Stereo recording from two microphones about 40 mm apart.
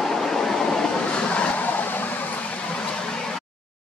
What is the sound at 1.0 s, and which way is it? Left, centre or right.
Vehicle, left.